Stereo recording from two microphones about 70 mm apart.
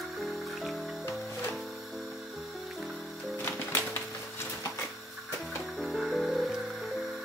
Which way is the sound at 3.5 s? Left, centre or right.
Left.